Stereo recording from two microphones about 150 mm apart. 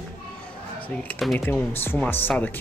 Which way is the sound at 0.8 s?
10° left (ahead or behind).